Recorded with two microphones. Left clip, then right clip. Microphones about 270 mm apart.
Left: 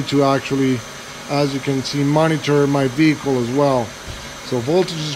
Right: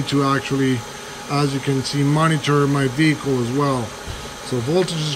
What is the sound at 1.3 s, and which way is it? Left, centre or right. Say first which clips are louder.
Speech: left 2 dB; centre.